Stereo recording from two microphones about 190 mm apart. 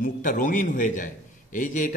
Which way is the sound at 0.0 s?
45° left (ahead or behind).